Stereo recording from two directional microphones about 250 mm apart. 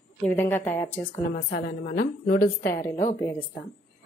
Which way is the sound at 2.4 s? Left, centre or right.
Centre.